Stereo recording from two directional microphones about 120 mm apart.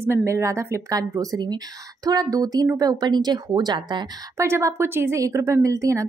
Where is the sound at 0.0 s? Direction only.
20° right (ahead or behind); by 4.1 s 40° right (ahead or behind).